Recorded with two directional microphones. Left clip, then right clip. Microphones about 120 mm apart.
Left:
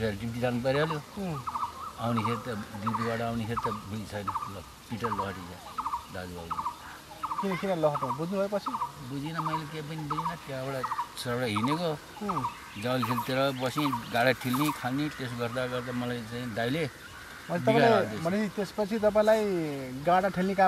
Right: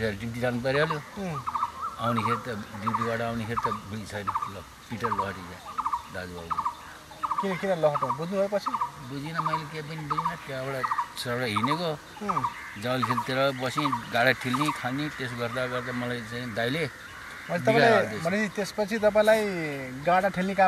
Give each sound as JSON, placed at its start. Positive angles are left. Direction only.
{"t": 0.0, "sound": "speech", "side_deg": -5}
{"t": 5.8, "sound": "turkey", "side_deg": -10}
{"t": 7.4, "sound": "speech", "side_deg": -20}
{"t": 9.2, "sound": "speech", "side_deg": -5}